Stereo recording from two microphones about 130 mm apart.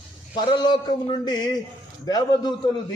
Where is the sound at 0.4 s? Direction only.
35° left (ahead or behind).